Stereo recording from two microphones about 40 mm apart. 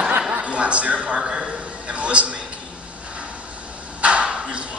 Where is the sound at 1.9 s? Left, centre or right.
Right.